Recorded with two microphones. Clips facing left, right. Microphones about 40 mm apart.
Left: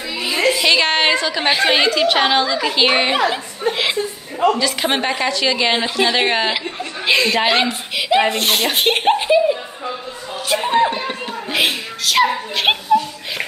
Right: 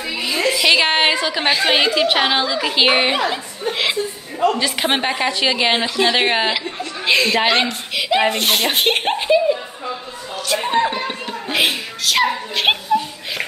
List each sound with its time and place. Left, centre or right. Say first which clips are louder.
0.5 s a woman's voice: even; centre
1.5 s speech: left 1 dB; centre
1.8 s speech: left 1 dB; centre
4.6 s a woman's voice: even; centre
10.6 s speech: left 2 dB; centre